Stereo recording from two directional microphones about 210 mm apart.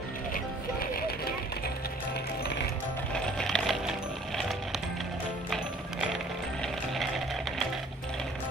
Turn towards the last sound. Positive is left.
turn(degrees=0)  # may be behind; listen again after turning